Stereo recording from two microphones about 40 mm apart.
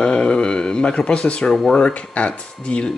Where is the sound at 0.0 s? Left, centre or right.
Left.